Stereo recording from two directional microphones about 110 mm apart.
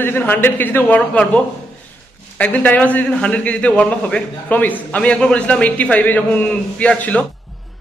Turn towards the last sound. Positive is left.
turn(degrees=15)  # may be behind; listen again after turning